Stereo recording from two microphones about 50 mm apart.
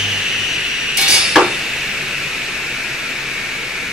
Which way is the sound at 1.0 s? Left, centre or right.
Centre.